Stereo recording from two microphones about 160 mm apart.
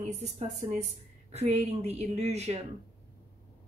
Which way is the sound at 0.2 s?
45° right (ahead or behind).